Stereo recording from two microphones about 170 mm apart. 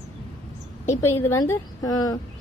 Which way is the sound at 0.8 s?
15° left (ahead or behind).